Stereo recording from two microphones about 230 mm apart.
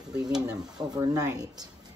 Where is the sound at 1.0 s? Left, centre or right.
Centre.